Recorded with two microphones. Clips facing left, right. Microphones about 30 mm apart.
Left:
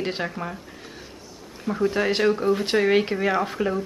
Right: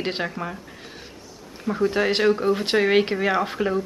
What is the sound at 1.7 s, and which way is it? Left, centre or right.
Speech, centre.